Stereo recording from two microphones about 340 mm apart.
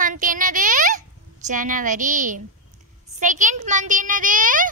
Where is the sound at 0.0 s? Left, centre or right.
Right.